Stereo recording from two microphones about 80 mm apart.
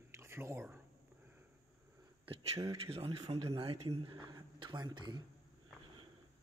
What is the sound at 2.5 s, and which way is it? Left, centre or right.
A man's voice, right.